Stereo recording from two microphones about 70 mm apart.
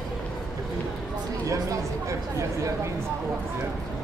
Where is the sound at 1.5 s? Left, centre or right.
Right.